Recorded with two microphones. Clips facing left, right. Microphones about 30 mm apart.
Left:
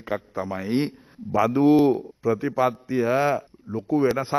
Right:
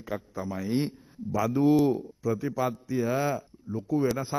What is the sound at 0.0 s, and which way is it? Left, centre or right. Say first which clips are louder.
A man's voice: left 6 dB; left.